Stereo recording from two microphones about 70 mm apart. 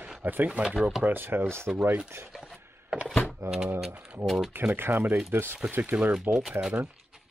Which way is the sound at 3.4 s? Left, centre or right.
Right.